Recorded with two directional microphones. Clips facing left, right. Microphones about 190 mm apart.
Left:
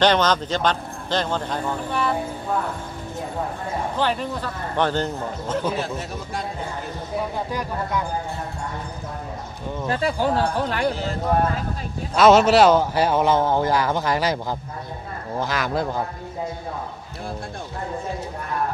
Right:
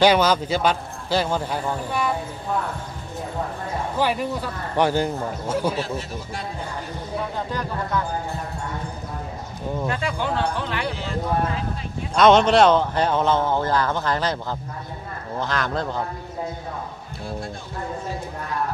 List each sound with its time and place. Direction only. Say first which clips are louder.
0.0 s a man's voice: right 1 dB; 10° right (ahead or behind)
4.0 s a man's voice: right 2 dB; 10° right (ahead or behind)
9.8 s speech: left 6 dB; 35° left (ahead or behind)
12.2 s a man's voice: left 1 dB; 5° left (ahead or behind)